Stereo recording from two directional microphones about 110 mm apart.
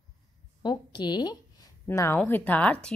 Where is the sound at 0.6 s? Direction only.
40° left (ahead or behind).